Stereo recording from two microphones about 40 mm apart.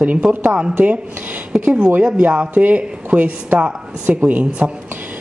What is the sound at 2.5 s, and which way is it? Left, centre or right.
A woman's voice, right.